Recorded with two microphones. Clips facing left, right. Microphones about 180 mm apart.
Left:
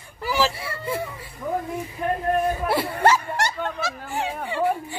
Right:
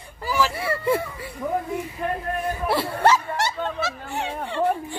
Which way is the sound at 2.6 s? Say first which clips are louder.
Right 4 dB; centre (ahead or behind).